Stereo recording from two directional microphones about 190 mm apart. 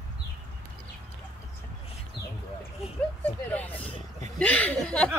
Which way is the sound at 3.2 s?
10° left (ahead or behind).